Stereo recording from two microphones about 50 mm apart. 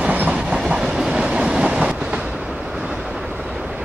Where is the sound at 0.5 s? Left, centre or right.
Centre.